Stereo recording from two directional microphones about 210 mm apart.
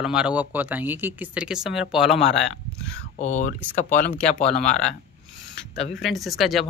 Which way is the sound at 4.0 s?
5° left (ahead or behind).